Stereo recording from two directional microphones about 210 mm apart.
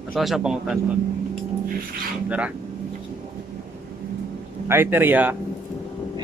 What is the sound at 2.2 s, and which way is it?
Speech, 5° right (ahead or behind).